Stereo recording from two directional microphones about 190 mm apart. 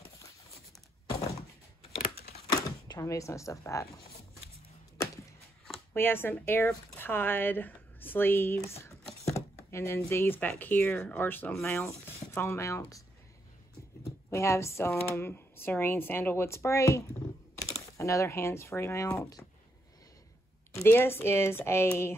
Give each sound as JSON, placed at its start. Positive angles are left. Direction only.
{"t": 2.5, "sound": "speech", "side_deg": 20}
{"t": 5.9, "sound": "speech", "side_deg": 10}
{"t": 14.3, "sound": "speech", "side_deg": 15}
{"t": 20.7, "sound": "speech", "side_deg": 10}